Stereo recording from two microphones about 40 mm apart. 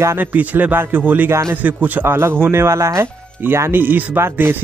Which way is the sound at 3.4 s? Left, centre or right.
Right.